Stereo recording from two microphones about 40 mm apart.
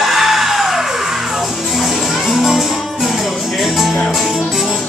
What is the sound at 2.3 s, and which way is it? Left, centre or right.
Music, centre.